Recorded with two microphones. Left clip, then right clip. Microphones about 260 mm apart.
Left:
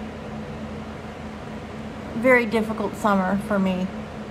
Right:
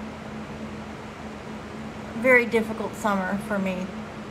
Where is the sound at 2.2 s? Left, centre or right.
Centre.